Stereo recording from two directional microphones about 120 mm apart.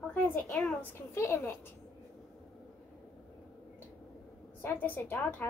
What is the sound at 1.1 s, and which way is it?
Speech, 20° left (ahead or behind).